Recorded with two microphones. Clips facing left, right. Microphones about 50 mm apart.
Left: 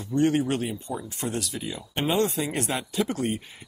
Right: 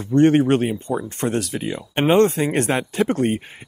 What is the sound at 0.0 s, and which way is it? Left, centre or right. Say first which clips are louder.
Speech: right 8 dB; right.